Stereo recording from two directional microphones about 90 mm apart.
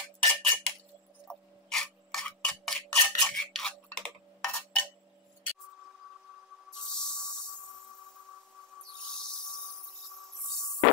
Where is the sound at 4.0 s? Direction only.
10° left (ahead or behind).